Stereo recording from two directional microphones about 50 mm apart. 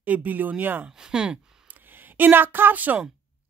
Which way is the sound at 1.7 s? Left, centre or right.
Right.